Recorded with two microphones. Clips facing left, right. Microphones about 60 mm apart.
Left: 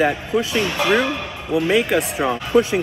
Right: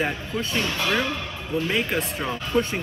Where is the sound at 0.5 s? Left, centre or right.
Centre.